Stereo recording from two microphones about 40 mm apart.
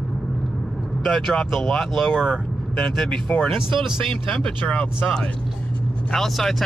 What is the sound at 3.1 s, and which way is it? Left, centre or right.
Speech, left.